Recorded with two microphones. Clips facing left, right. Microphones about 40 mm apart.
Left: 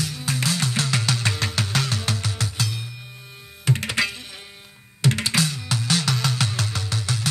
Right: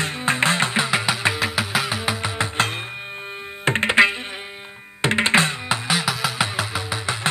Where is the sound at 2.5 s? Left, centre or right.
Right.